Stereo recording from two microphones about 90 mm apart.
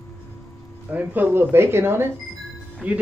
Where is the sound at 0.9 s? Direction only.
20° right (ahead or behind).